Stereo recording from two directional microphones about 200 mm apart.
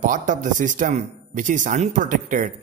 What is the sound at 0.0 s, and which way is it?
Speech, 40° right (ahead or behind).